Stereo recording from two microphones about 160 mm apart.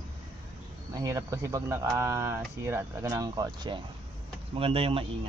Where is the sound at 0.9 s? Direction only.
20° right (ahead or behind).